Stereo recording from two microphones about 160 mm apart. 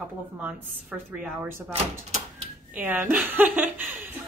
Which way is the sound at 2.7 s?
10° right (ahead or behind).